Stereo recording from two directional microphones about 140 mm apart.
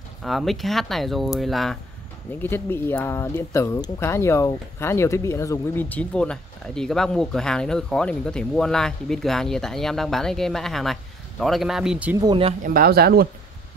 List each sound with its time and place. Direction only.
0.2 s speech: centre (ahead or behind)
2.3 s speech: 15° left (ahead or behind); by 12.2 s 5° right (ahead or behind)
12.3 s speech: 40° right (ahead or behind)
12.6 s speech: 90° right